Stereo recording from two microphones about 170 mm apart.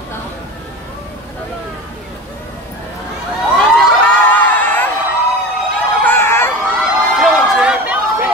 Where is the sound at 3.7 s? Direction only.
5° left (ahead or behind).